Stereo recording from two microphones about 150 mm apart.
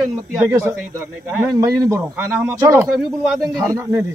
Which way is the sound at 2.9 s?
Centre (ahead or behind).